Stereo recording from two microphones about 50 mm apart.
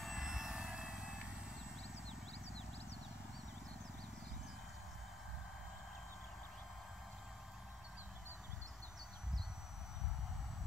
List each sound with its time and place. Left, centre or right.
0.0 s vehicle: centre